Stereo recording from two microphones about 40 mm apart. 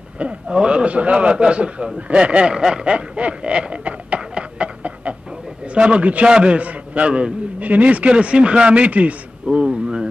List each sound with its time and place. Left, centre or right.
0.2 s a sound: right
0.7 s a man's voice: right
2.5 s snicker: centre
5.7 s a man's voice: right
7.6 s a man's voice: right
9.5 s a sound: right